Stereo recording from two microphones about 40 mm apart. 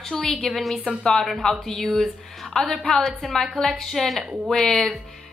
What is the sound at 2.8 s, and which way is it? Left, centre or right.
Speech, centre.